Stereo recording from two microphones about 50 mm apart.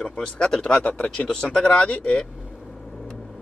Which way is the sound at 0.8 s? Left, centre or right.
Left.